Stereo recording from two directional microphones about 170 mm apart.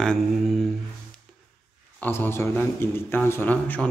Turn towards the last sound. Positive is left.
turn(degrees=10)  # may be behind; listen again after turning